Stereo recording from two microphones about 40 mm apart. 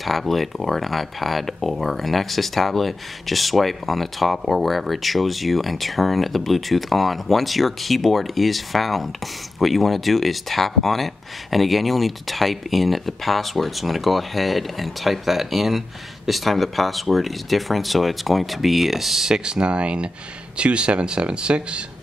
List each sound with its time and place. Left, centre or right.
0.0 s speech: centre
19.2 s speech: centre